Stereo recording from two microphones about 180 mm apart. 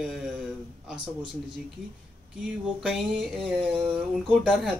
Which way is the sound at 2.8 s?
Centre (ahead or behind).